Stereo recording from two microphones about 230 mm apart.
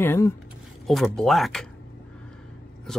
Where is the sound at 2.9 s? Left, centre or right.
Centre.